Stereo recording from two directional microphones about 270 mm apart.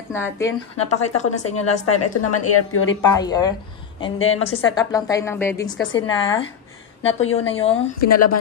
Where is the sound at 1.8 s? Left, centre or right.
Left.